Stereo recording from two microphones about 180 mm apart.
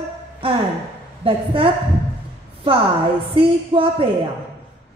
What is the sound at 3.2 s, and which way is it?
Speech, 30° right (ahead or behind).